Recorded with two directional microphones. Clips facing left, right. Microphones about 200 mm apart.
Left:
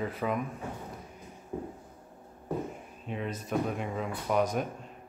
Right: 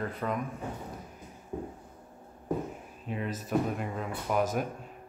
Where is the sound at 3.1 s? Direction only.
Centre (ahead or behind).